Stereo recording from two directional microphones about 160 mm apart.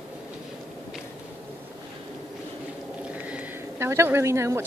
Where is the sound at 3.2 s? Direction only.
10° right (ahead or behind).